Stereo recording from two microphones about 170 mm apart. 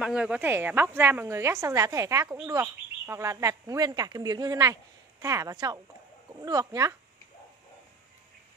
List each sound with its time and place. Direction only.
0.0 s speech: 5° right (ahead or behind)